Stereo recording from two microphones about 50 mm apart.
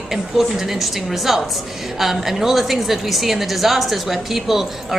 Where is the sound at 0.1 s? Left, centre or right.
Centre.